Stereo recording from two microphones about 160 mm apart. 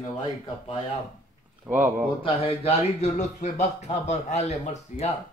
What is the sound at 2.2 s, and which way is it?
A man's voice, 35° left (ahead or behind).